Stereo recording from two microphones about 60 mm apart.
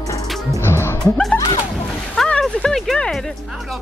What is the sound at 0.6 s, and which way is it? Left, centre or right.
Speech, left.